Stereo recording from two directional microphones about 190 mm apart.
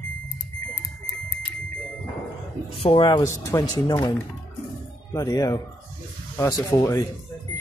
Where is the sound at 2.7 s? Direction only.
30° left (ahead or behind).